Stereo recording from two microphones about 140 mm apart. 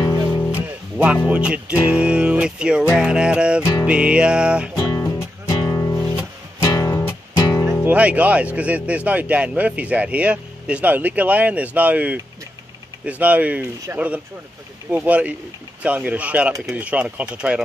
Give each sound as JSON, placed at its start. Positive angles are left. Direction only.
{"t": 0.5, "sound": "music", "side_deg": -10}
{"t": 3.0, "sound": "speech", "side_deg": -5}
{"t": 5.7, "sound": "music", "side_deg": 20}
{"t": 7.8, "sound": "speech", "side_deg": -10}